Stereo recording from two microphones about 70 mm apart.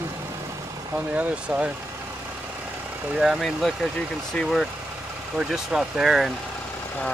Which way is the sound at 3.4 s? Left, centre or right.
Centre.